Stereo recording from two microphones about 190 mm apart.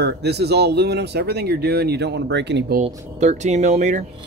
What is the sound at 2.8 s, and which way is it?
Speech, 40° right (ahead or behind).